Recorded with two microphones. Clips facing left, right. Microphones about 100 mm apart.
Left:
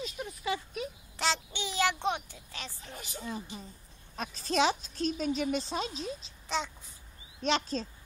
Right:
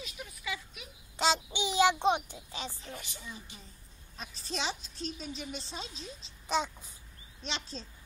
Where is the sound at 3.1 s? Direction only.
50° left (ahead or behind).